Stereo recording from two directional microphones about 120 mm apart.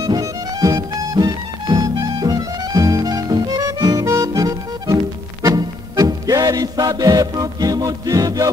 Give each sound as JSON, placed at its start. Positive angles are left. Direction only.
{"t": 0.0, "sound": "music", "side_deg": -30}